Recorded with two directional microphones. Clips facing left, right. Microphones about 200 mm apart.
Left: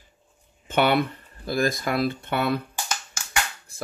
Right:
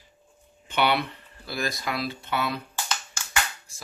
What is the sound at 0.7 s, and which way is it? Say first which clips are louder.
Speech: left 4 dB; 50° left (ahead or behind).